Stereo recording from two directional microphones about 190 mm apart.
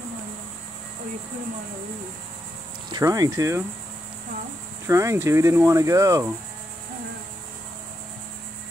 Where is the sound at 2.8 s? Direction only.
20° right (ahead or behind).